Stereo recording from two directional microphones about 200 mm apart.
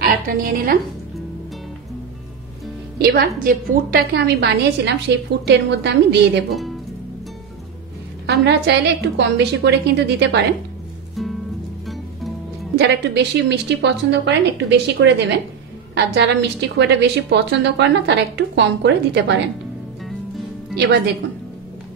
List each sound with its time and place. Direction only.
0.0 s a woman's voice: 45° right (ahead or behind)
3.0 s a woman's voice: 50° right (ahead or behind)
8.3 s a woman's voice: 55° right (ahead or behind)
12.7 s a woman's voice: 60° right (ahead or behind)
20.7 s a woman's voice: 55° right (ahead or behind)